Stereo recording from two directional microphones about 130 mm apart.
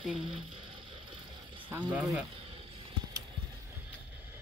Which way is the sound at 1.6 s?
15° right (ahead or behind).